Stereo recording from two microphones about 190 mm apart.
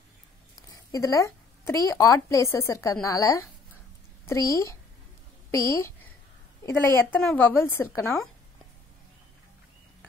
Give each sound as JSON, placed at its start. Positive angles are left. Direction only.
{"t": 0.9, "sound": "a woman's voice", "side_deg": 15}